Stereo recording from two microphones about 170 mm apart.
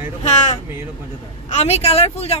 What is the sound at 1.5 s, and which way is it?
Speech, 40° left (ahead or behind).